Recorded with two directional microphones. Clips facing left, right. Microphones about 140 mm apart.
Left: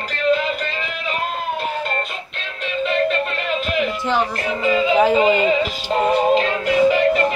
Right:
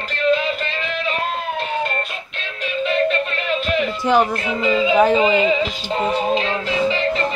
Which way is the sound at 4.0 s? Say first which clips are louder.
Right 4 dB; 15° right (ahead or behind).